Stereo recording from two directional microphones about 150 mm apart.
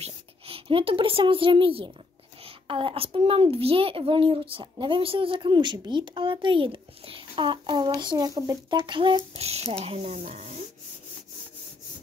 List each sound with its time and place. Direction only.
0.0 s a woman's voice: 40° right (ahead or behind)
9.4 s speech: 45° right (ahead or behind)